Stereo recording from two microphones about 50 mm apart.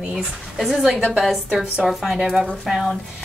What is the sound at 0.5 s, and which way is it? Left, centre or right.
A woman's voice, centre.